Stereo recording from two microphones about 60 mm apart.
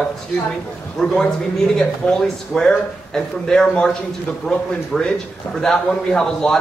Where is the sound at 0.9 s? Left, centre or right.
Centre.